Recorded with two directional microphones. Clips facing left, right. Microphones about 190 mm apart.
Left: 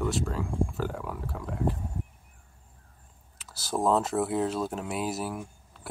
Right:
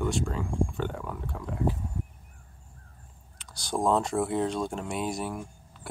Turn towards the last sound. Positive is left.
turn(degrees=0)  # may be behind; listen again after turning